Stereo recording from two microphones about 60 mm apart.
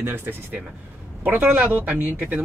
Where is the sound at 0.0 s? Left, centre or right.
Right.